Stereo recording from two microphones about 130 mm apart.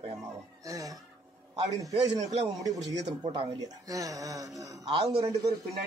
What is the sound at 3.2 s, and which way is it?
Speech, 45° right (ahead or behind).